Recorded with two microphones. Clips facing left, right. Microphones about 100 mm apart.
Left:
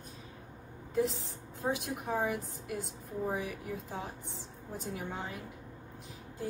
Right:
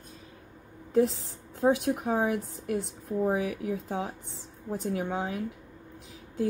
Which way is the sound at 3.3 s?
85° right.